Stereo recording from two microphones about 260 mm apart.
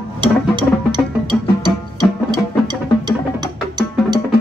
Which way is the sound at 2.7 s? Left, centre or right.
Centre.